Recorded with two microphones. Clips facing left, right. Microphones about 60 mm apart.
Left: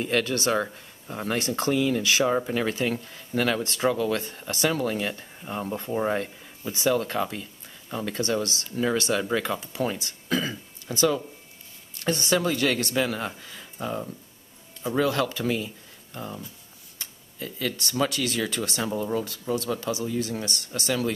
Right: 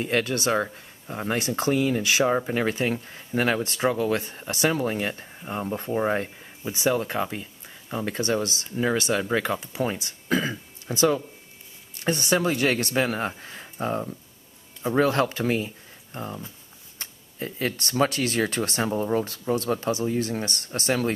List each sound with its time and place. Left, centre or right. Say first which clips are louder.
0.0 s speech: even; right
5.2 s speech: right 1 dB; centre; by 21.1 s right